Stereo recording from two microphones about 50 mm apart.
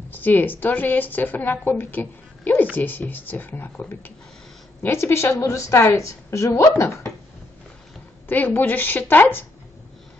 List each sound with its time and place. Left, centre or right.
0.1 s a woman's voice: left
4.8 s a woman's voice: left
6.6 s speech: left
8.3 s a woman's voice: left